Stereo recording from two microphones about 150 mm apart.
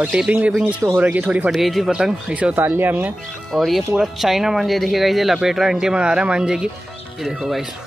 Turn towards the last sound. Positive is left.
turn(degrees=0)  # may be behind; listen again after turning